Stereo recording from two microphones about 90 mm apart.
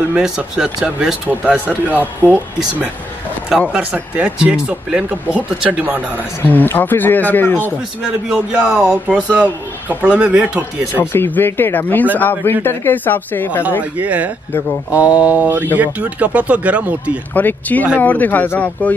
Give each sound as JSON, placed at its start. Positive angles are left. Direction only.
{"t": 0.1, "sound": "speech", "side_deg": -10}
{"t": 6.1, "sound": "speech", "side_deg": 20}
{"t": 8.3, "sound": "speech", "side_deg": -10}
{"t": 11.0, "sound": "speech", "side_deg": 20}
{"t": 13.9, "sound": "speech", "side_deg": -15}
{"t": 17.3, "sound": "speech", "side_deg": 20}